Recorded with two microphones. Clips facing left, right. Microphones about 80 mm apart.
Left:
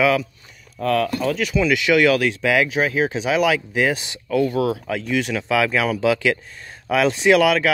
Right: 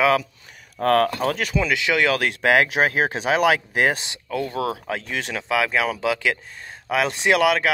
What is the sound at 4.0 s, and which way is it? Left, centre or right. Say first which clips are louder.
Speech: left 6 dB; right.